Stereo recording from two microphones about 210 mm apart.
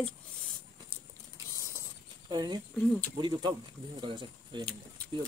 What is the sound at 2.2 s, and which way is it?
Speech, 20° right (ahead or behind).